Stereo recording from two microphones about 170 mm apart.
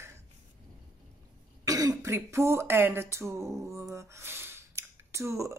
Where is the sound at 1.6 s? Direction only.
20° right (ahead or behind).